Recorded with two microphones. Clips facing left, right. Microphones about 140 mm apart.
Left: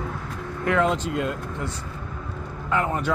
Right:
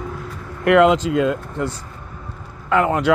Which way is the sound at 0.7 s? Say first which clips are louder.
Right 9 dB; 85° right.